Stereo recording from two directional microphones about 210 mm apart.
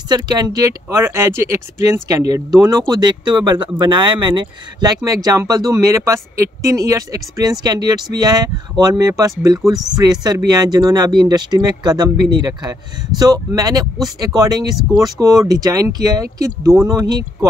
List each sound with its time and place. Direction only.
0.1 s speech: 20° right (ahead or behind)
9.6 s speech: centre (ahead or behind)
9.9 s speech: 20° right (ahead or behind)